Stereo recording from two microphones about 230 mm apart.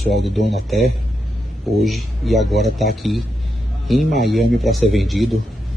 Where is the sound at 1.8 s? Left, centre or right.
Centre.